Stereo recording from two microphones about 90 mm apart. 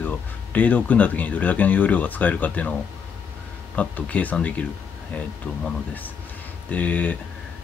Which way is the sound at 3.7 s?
15° left (ahead or behind).